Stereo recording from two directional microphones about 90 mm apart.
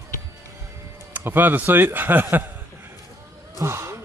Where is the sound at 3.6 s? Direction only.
30° right (ahead or behind).